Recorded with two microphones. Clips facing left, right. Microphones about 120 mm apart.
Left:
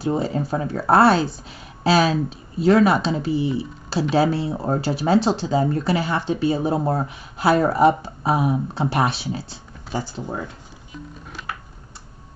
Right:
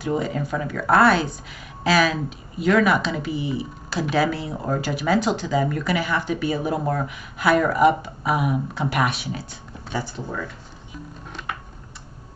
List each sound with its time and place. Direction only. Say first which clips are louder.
0.0 s speech: left 2 dB; 30° left (ahead or behind)